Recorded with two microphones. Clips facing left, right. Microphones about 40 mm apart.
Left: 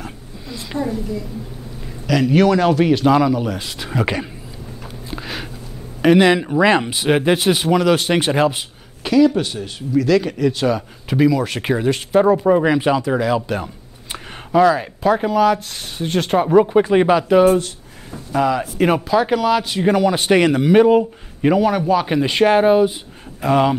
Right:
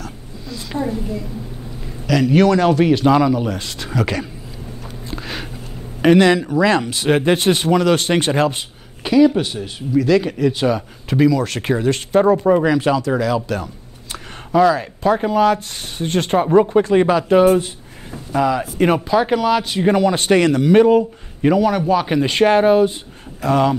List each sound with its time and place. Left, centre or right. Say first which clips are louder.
0.0 s a sound: even; centre
2.0 s speech: right 1 dB; centre
3.9 s speech: even; centre
5.1 s a sound: even; centre
6.1 s speech: even; centre
7.0 s speech: even; centre
9.0 s speech: right 1 dB; centre
11.1 s speech: right 1 dB; centre
12.6 s speech: even; centre
18.1 s speech: even; centre
20.3 s speech: even; centre
20.7 s speech: even; centre
23.4 s speech: even; centre